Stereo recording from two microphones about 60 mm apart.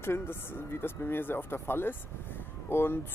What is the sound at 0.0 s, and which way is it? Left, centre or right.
Speech, left.